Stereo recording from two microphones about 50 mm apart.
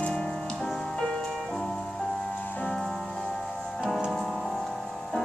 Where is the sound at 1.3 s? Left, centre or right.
Centre.